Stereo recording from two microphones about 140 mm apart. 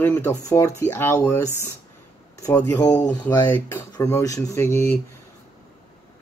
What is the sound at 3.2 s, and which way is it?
Speech, 15° left (ahead or behind).